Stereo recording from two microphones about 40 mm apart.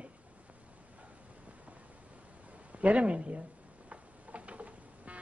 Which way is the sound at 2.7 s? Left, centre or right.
Right.